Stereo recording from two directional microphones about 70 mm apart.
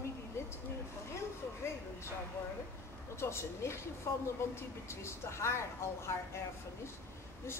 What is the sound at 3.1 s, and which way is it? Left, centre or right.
A woman's voice, left.